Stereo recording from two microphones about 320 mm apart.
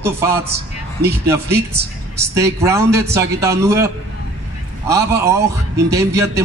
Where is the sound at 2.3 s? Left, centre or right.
Centre.